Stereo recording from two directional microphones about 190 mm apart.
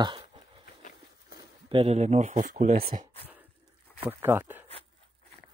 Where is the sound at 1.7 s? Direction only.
30° right (ahead or behind).